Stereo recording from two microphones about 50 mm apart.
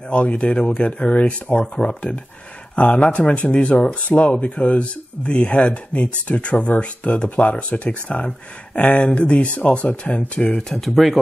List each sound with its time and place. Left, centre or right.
0.1 s speech: left
10.7 s speech: centre